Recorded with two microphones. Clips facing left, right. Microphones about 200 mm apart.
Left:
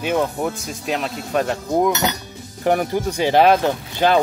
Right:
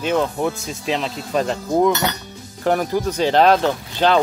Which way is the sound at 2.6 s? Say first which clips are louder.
Even; 15° left (ahead or behind).